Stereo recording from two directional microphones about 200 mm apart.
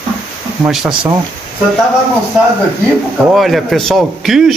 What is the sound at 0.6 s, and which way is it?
Speech, 5° right (ahead or behind).